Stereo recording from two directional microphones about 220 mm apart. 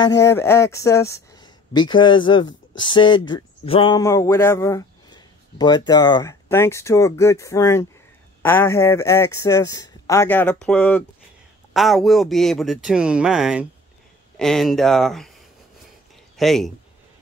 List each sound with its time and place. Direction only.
0.2 s speech: 10° left (ahead or behind)
16.3 s speech: centre (ahead or behind)